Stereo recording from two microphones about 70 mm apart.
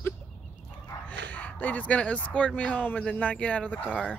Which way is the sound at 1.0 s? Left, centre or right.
Left.